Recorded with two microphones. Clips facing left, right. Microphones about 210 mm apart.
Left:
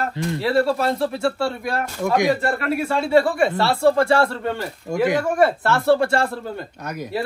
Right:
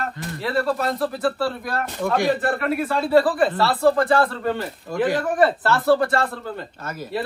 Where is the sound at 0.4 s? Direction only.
30° left (ahead or behind).